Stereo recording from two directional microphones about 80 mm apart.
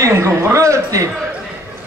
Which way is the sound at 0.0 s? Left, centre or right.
Right.